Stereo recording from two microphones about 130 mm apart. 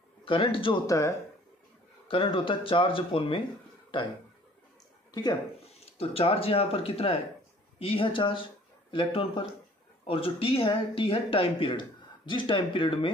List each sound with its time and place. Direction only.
0.2 s a man's voice: 45° left (ahead or behind)
0.8 s speech: 25° left (ahead or behind)
2.0 s speech: 40° left (ahead or behind)
5.1 s speech: 30° left (ahead or behind)
5.9 s speech: 50° left (ahead or behind)